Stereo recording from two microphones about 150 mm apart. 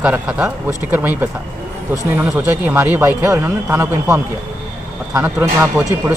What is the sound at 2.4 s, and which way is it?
Speech, 15° right (ahead or behind).